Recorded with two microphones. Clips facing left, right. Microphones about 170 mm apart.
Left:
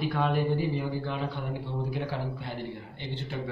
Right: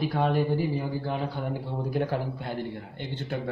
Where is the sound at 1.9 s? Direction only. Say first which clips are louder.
Right 9 dB; 50° right (ahead or behind).